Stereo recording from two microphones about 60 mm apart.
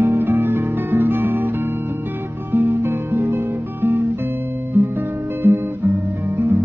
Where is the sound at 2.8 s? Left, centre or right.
Right.